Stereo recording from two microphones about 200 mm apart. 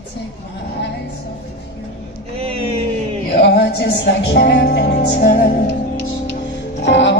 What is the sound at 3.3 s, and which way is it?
Music, 60° left (ahead or behind).